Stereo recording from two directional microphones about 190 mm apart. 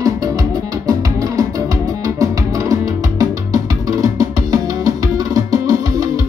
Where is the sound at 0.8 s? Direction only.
20° right (ahead or behind).